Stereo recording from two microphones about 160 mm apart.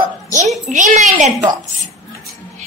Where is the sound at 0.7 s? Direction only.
50° right (ahead or behind).